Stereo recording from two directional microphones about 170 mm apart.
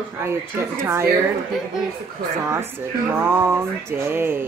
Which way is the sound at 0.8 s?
15° right (ahead or behind).